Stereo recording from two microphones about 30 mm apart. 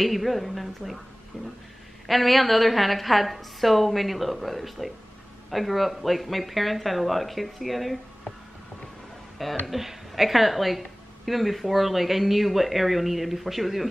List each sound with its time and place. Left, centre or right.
0.0 s a woman's voice: centre
1.3 s speech: left
2.0 s a woman's voice: centre
9.7 s a woman's voice: centre